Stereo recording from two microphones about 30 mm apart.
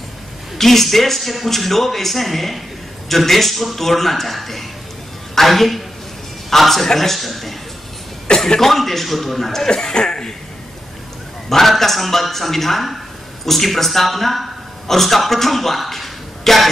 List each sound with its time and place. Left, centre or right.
0.6 s a man's voice: centre
8.5 s a man's voice: centre
9.9 s speech: left
11.4 s a man's voice: centre